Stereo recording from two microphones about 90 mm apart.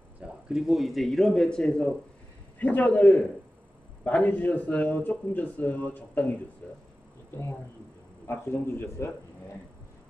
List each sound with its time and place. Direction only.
0.2 s a man's voice: 5° right (ahead or behind); by 6.3 s 20° left (ahead or behind)
8.3 s speech: 25° left (ahead or behind)